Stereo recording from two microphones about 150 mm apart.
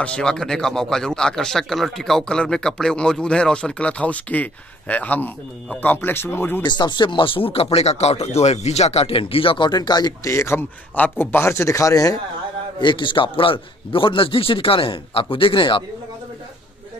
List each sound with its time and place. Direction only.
0.0 s speech: 5° left (ahead or behind)
6.6 s speech: 30° left (ahead or behind)